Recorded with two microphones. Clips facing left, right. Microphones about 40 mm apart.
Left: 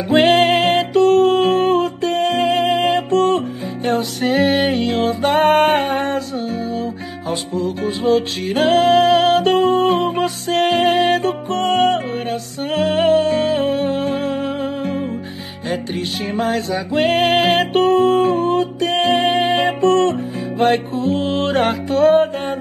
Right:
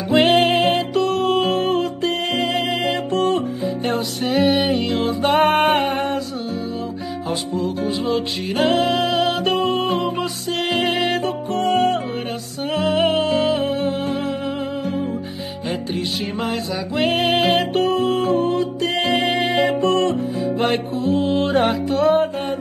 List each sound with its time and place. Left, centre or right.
0.1 s music: left
5.4 s music: right
5.7 s music: left
7.8 s music: left
16.5 s music: left